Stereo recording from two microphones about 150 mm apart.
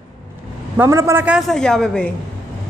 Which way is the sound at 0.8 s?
20° right (ahead or behind).